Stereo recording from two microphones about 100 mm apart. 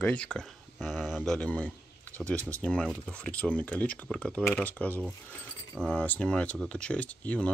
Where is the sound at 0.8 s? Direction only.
5° right (ahead or behind).